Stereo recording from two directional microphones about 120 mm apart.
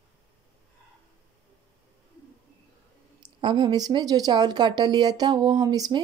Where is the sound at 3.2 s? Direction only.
40° right (ahead or behind).